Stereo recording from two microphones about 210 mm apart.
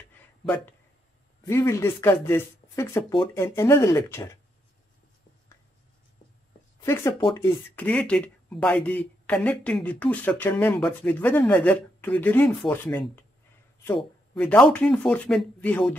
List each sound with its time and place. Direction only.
1.4 s speech: 15° left (ahead or behind)
6.8 s speech: 15° left (ahead or behind)
7.2 s speech: 25° left (ahead or behind)
7.4 s speech: 10° left (ahead or behind)
14.3 s speech: 5° left (ahead or behind)